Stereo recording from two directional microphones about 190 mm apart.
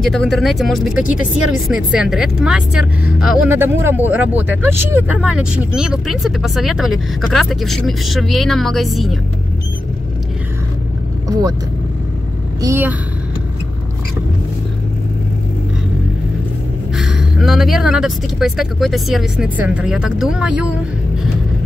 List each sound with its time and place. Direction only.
0.0 s speech: centre (ahead or behind)
12.6 s speech: 10° right (ahead or behind)
16.9 s speech: 5° right (ahead or behind)